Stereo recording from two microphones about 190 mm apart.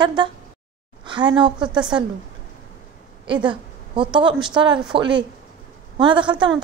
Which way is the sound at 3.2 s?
25° right (ahead or behind).